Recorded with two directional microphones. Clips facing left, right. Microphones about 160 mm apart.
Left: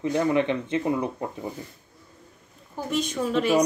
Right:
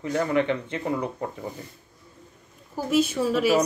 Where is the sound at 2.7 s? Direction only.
5° right (ahead or behind).